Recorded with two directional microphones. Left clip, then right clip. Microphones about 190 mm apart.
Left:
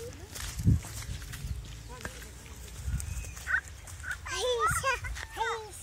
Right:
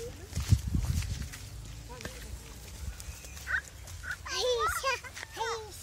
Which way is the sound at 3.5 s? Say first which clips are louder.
Left 2 dB; 55° right (ahead or behind).